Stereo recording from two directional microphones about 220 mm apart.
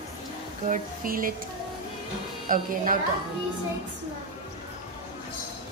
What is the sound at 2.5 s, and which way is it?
Speech, 40° right (ahead or behind).